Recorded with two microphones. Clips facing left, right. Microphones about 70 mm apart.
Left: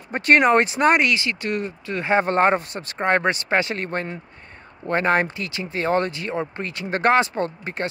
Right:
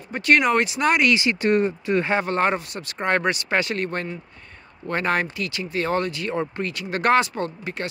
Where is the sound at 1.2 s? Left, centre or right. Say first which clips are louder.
Right 6 dB; right.